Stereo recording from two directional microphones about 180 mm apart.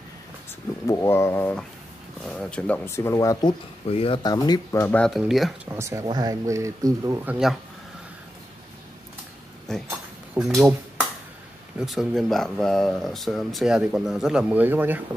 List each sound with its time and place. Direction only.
0.8 s speech: 15° left (ahead or behind)
3.9 s speech: 30° left (ahead or behind)
4.8 s speech: 5° left (ahead or behind)
5.7 s speech: 15° right (ahead or behind)
9.7 s a sound: 5° left (ahead or behind)
10.3 s speech: 5° right (ahead or behind)